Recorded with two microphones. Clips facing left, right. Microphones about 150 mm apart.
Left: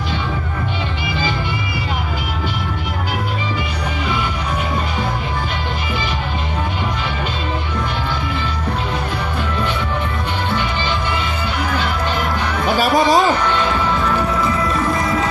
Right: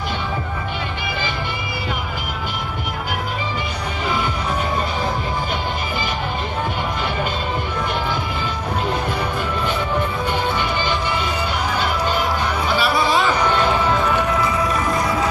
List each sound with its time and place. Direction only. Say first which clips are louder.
12.7 s music: left 5 dB; 45° left (ahead or behind)